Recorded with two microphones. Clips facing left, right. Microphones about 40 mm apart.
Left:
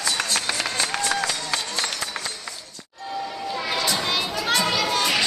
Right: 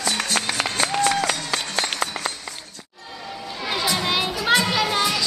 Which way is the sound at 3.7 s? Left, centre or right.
Centre.